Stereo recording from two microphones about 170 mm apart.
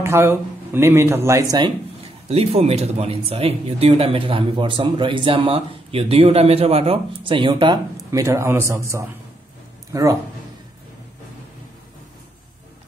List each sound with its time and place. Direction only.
0.0 s speech: 15° right (ahead or behind)
2.2 s speech: 35° right (ahead or behind)
8.1 s a man's voice: 20° right (ahead or behind)